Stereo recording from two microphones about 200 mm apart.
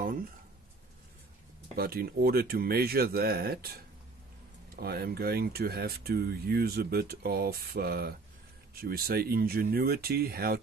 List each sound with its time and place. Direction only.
1.8 s speech: 50° right (ahead or behind)